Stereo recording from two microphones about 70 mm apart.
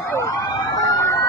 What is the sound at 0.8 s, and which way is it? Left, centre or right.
Emergency vehicle, left.